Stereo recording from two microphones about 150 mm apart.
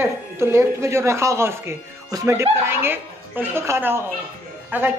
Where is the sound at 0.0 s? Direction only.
15° right (ahead or behind).